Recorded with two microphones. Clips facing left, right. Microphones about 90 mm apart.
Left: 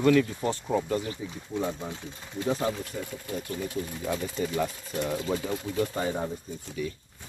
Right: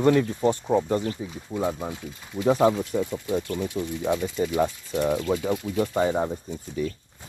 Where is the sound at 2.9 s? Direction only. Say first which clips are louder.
Right 10 dB; 55° right (ahead or behind).